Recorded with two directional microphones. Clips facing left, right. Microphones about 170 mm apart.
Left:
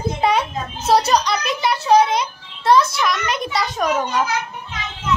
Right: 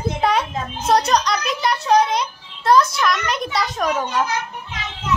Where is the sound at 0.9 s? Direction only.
5° left (ahead or behind).